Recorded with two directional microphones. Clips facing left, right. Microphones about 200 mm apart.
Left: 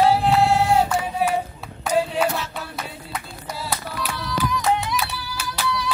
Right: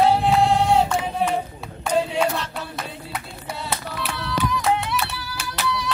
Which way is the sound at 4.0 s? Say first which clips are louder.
Even; centre (ahead or behind).